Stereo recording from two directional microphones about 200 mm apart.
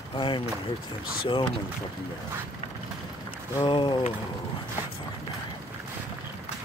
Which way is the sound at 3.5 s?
25° left (ahead or behind).